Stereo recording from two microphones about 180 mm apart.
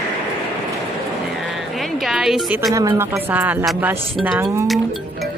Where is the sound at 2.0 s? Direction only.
Centre (ahead or behind).